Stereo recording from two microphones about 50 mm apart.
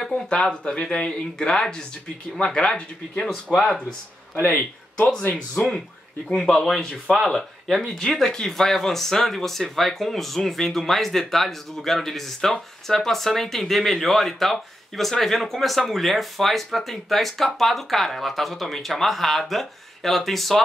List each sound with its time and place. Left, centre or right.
0.0 s speech: centre
3.5 s speech: centre
4.6 s speech: left
6.4 s speech: centre